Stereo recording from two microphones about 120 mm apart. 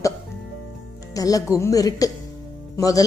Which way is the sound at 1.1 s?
30° left (ahead or behind).